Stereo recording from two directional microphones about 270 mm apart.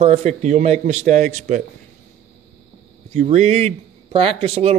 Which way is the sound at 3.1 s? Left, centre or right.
Right.